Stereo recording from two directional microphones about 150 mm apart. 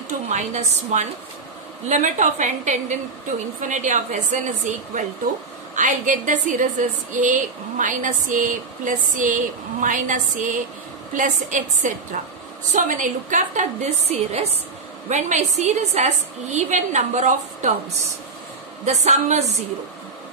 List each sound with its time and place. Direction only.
0.3 s a woman's voice: 50° right (ahead or behind)
14.1 s a woman's voice: 45° right (ahead or behind)
18.9 s a woman's voice: 50° right (ahead or behind)